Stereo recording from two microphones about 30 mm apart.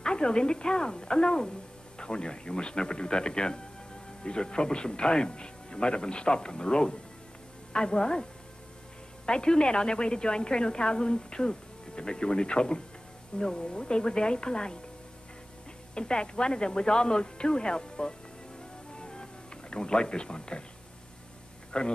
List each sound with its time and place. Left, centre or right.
0.0 s a woman's voice: left
15.9 s a woman's voice: left
18.9 s music: left
21.7 s speech: left